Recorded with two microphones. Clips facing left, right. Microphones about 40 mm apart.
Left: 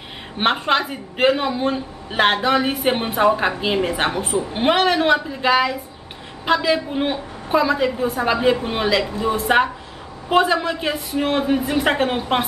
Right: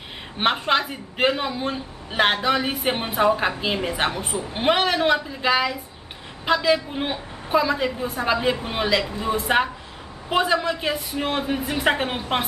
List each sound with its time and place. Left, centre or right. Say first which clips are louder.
0.4 s a man's voice: left 2 dB; centre